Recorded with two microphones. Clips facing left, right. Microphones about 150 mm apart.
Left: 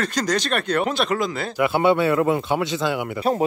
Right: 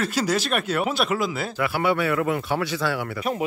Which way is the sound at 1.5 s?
20° left (ahead or behind).